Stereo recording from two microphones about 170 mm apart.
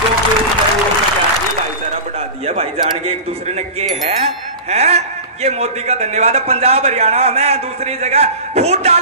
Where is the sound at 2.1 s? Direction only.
35° right (ahead or behind).